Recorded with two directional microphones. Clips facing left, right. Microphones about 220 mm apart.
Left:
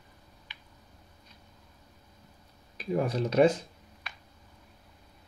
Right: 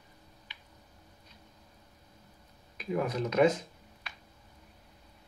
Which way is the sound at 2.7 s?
35° left (ahead or behind).